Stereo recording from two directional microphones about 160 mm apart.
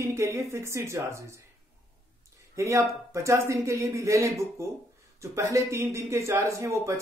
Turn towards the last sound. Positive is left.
turn(degrees=-20)  # may be behind; listen again after turning